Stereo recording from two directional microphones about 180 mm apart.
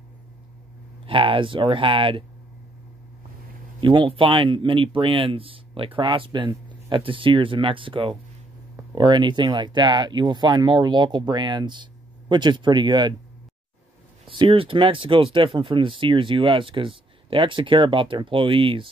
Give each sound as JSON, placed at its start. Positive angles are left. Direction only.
{"t": 1.0, "sound": "speech", "side_deg": -30}
{"t": 3.8, "sound": "speech", "side_deg": -25}
{"t": 14.4, "sound": "speech", "side_deg": -30}